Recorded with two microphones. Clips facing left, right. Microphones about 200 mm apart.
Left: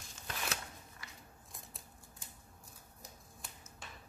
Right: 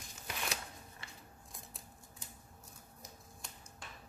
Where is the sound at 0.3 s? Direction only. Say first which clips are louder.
Even; centre (ahead or behind).